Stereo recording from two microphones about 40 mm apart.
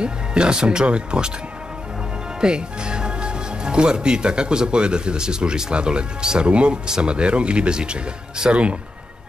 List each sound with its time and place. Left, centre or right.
0.0 s speech: right
2.4 s speech: right